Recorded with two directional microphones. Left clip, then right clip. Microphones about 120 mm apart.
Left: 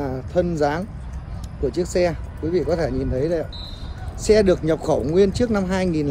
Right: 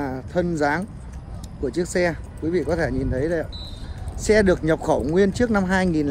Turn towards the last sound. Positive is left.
turn(degrees=40)  # may be behind; listen again after turning